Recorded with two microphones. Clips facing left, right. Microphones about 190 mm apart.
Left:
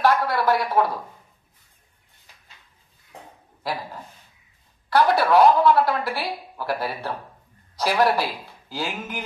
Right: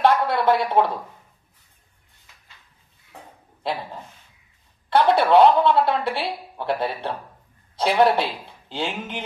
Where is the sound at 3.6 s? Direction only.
25° right (ahead or behind).